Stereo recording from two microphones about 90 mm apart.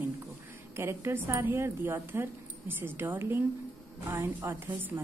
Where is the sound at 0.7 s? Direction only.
30° right (ahead or behind).